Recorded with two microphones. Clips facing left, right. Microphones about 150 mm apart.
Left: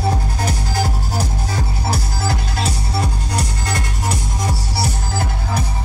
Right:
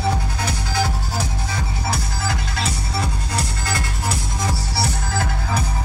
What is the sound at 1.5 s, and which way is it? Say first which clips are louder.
Music: left 3 dB; 30° left (ahead or behind).